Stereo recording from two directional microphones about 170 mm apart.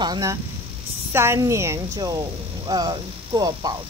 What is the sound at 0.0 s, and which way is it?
Speech, 20° right (ahead or behind).